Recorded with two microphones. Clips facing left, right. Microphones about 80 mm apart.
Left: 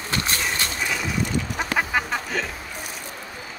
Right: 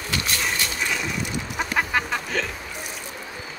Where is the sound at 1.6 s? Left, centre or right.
Centre.